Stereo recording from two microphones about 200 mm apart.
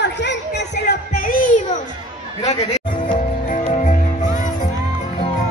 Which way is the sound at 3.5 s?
40° left (ahead or behind).